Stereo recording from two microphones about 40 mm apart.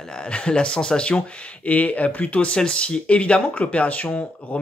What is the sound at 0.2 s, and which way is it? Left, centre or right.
Speech, left.